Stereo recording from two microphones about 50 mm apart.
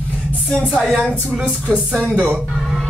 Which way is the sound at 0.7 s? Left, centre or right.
Centre.